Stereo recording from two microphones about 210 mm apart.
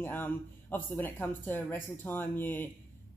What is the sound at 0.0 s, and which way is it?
Speech, 10° left (ahead or behind).